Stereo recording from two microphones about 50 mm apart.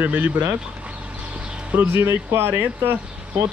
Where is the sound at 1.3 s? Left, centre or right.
Right.